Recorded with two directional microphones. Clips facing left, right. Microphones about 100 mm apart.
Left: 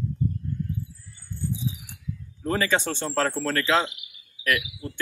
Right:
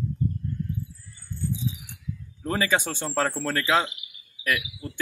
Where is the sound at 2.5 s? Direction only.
10° right (ahead or behind).